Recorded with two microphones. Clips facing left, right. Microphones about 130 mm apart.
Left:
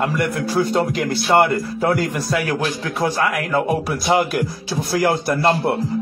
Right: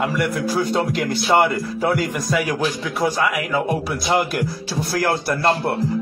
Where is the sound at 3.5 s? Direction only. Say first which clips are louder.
Left 2 dB; centre (ahead or behind).